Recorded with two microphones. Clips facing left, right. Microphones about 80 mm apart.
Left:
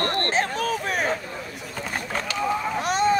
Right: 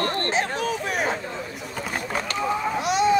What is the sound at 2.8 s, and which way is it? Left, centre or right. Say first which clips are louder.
Boat: right 1 dB; left.